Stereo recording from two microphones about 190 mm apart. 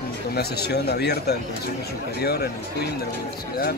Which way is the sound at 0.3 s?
55° left (ahead or behind).